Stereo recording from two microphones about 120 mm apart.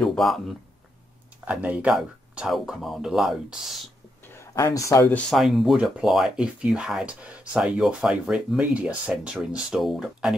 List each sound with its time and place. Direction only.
0.0 s a man's voice: 5° left (ahead or behind)
1.4 s speech: 10° right (ahead or behind)
4.2 s a sound: 20° left (ahead or behind)
5.3 s speech: centre (ahead or behind)